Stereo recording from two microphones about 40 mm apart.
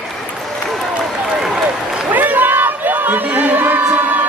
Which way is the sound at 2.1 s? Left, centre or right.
Right.